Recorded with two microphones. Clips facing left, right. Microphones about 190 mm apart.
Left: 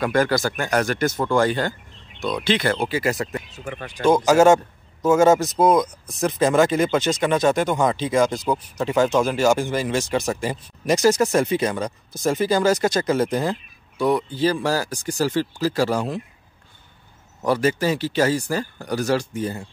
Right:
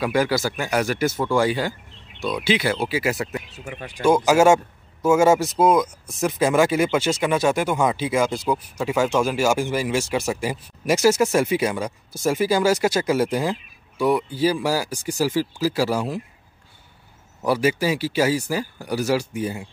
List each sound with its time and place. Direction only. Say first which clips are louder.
0.0 s speech: left 1 dB; 10° right (ahead or behind)
3.6 s speech: left 2 dB; 45° left (ahead or behind)
4.0 s speech: left 1 dB; 10° right (ahead or behind)
17.5 s speech: even; 10° right (ahead or behind)